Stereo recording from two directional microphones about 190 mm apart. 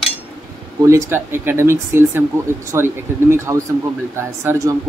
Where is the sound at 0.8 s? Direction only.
15° right (ahead or behind).